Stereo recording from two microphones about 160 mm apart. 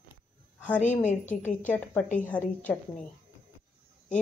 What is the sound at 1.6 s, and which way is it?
Speech, 10° left (ahead or behind).